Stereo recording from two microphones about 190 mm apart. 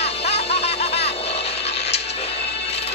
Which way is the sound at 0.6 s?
35° left (ahead or behind).